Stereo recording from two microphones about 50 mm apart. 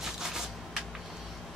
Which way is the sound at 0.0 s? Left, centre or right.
Centre.